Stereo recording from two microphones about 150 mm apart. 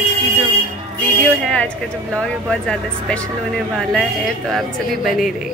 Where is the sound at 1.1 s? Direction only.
10° left (ahead or behind).